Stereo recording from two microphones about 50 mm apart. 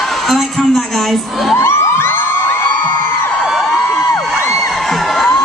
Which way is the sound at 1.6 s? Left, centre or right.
Left.